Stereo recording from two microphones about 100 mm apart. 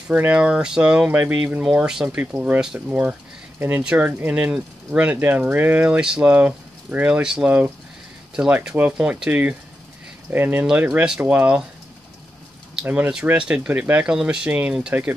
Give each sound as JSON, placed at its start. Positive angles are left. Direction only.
{"t": 0.1, "sound": "speech", "side_deg": -15}
{"t": 12.8, "sound": "speech", "side_deg": -15}